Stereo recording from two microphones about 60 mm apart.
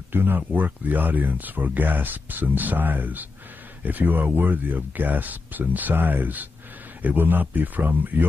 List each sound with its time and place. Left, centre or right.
0.1 s speech: right